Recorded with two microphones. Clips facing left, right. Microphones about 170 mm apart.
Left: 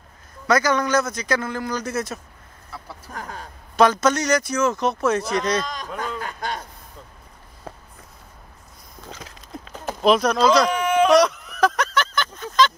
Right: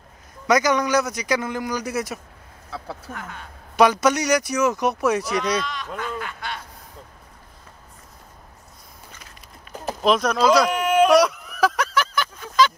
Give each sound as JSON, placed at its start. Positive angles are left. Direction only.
{"t": 0.5, "sound": "a man's voice", "side_deg": -15}
{"t": 3.1, "sound": "speech", "side_deg": 35}
{"t": 3.7, "sound": "a man's voice", "side_deg": -15}
{"t": 5.7, "sound": "speech", "side_deg": 40}
{"t": 9.1, "sound": "a sound", "side_deg": 90}
{"t": 10.0, "sound": "a sound", "side_deg": 0}